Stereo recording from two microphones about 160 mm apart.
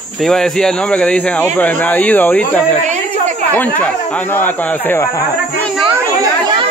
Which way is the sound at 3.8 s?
10° left (ahead or behind).